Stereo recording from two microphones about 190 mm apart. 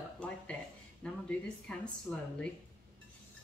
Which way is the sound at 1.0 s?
5° left (ahead or behind).